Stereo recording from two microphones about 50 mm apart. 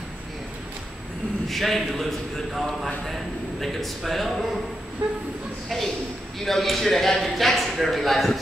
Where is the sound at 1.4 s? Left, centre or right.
Centre.